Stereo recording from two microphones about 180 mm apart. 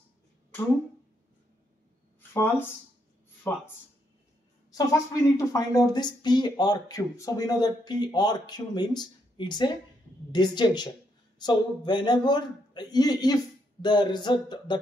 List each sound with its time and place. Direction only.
2.3 s speech: 10° left (ahead or behind)
4.7 s speech: 15° left (ahead or behind)